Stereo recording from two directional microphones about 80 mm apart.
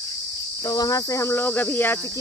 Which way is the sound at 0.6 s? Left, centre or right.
Left.